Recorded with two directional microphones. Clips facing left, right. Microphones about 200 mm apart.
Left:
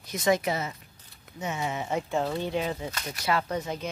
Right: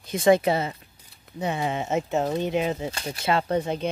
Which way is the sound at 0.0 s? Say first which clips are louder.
Right 6 dB; 30° right (ahead or behind).